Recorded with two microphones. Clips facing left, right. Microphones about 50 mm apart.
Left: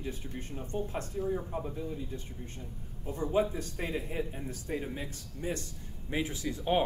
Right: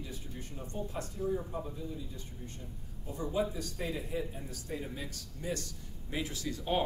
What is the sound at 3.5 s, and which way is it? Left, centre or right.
Speech, left.